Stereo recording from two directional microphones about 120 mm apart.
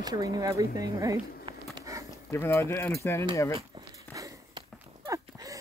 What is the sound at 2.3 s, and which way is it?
Speech, 20° left (ahead or behind).